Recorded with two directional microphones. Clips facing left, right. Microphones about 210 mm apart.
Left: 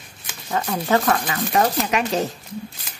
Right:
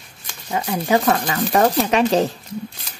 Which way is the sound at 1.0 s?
25° right (ahead or behind).